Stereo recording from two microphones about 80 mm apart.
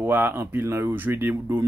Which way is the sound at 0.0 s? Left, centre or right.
Right.